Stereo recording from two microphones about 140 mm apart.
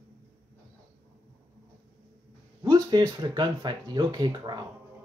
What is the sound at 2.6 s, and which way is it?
Speech, 30° right (ahead or behind).